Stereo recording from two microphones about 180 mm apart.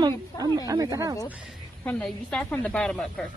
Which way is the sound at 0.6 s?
20° right (ahead or behind).